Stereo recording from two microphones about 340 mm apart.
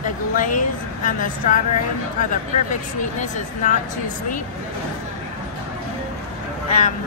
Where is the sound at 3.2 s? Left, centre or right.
Left.